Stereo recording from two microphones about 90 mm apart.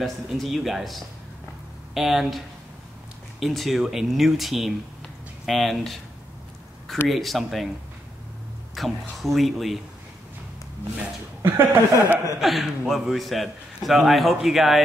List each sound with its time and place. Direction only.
0.0 s a man's voice: centre (ahead or behind)
7.1 s a man's voice: centre (ahead or behind)
8.8 s a man's voice: centre (ahead or behind)
11.4 s speech: 20° right (ahead or behind)
12.4 s a man's voice: centre (ahead or behind)